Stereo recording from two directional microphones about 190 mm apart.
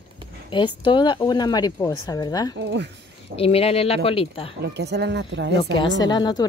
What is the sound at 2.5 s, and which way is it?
Speech, 60° right (ahead or behind).